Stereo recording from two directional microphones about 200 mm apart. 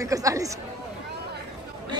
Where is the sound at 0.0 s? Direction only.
15° right (ahead or behind).